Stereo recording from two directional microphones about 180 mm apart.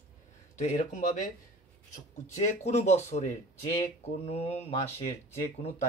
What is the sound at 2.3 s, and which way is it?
Speech, 40° left (ahead or behind).